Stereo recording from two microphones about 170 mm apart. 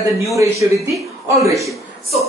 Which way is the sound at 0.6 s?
20° right (ahead or behind).